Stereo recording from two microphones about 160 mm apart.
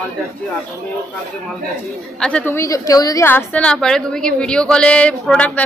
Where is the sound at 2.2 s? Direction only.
10° left (ahead or behind).